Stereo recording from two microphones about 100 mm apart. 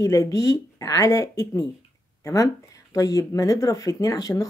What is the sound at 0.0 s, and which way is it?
Speech, 35° left (ahead or behind).